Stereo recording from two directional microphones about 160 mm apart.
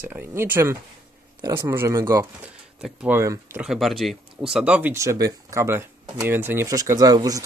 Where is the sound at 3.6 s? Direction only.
Centre (ahead or behind).